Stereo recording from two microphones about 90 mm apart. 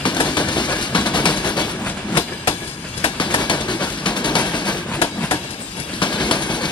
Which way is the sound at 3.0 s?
60° left (ahead or behind).